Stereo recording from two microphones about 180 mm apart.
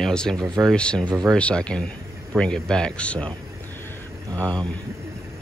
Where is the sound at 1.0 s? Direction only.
20° right (ahead or behind).